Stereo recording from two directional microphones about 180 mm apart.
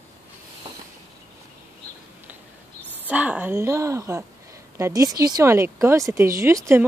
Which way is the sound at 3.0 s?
10° right (ahead or behind).